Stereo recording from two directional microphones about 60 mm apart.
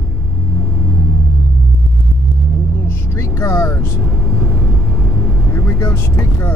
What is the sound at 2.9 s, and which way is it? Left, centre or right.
Speech, left.